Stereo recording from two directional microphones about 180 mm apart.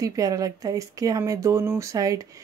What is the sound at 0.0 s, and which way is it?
Speech, 20° right (ahead or behind).